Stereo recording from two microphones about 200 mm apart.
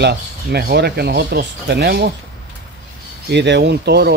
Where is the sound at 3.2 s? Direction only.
60° right (ahead or behind).